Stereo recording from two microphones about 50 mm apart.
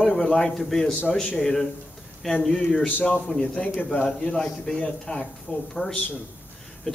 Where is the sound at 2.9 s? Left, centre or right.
Left.